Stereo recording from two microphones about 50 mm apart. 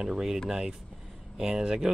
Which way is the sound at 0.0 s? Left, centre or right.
Centre.